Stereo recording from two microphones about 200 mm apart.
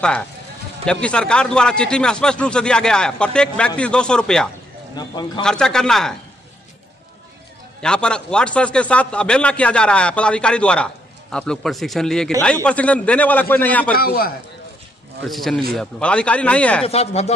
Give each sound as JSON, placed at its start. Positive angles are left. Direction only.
{"t": 1.0, "sound": "speech", "side_deg": 5}
{"t": 4.9, "sound": "a man's voice", "side_deg": 20}
{"t": 5.4, "sound": "speech", "side_deg": 5}
{"t": 7.8, "sound": "a man's voice", "side_deg": 5}
{"t": 13.9, "sound": "a man's voice", "side_deg": 50}
{"t": 15.2, "sound": "speech", "side_deg": 0}
{"t": 16.8, "sound": "speech", "side_deg": 30}